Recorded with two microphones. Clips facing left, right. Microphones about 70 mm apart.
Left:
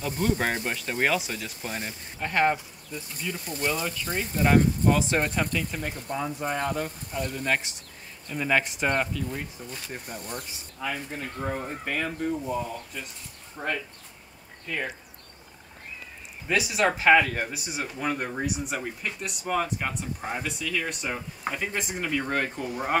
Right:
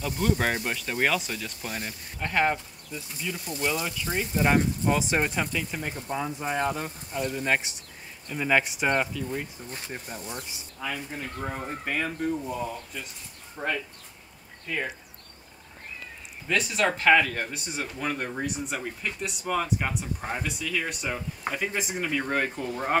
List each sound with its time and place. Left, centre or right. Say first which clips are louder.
0.0 s speech: even; centre
9.7 s speech: even; right
10.3 s speech: left 1 dB; centre
16.4 s speech: left 1 dB; centre
22.6 s speech: even; centre